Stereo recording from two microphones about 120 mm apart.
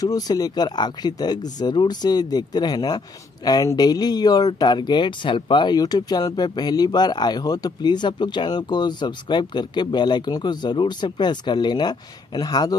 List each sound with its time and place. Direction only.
0.0 s speech: 30° left (ahead or behind)